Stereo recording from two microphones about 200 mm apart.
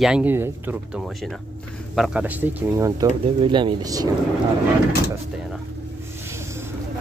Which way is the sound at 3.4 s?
25° right (ahead or behind).